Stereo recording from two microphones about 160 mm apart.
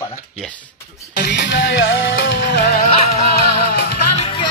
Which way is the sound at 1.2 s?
90° left.